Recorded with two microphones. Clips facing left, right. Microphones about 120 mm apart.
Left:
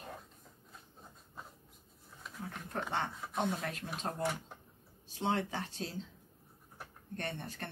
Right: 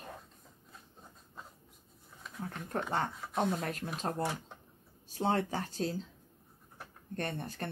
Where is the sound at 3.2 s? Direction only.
Centre (ahead or behind).